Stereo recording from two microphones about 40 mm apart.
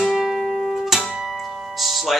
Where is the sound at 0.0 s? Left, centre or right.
Centre.